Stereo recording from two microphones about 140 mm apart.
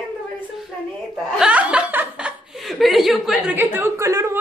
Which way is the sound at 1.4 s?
5° right (ahead or behind).